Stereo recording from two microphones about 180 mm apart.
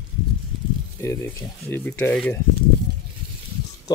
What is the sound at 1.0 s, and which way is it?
Speech, 15° left (ahead or behind).